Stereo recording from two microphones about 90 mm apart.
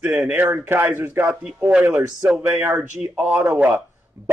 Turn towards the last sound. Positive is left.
turn(degrees=-15)  # may be behind; listen again after turning